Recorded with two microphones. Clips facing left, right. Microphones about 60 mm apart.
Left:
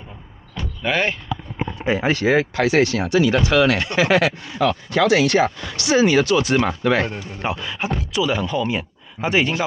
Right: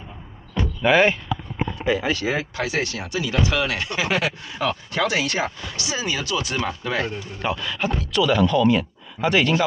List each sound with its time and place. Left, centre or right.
0.8 s speech: centre
1.9 s speech: left
7.3 s a man's voice: centre